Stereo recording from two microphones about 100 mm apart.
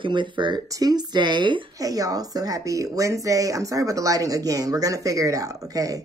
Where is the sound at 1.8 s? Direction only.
35° right (ahead or behind).